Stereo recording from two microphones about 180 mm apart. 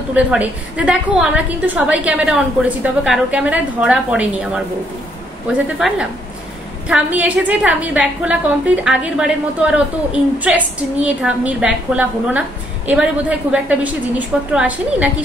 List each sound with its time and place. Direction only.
0.1 s a woman's voice: 5° right (ahead or behind)